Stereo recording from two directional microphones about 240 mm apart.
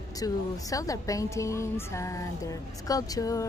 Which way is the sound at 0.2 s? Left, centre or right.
Centre.